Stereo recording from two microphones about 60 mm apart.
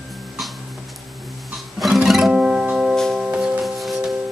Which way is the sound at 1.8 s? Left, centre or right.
Centre.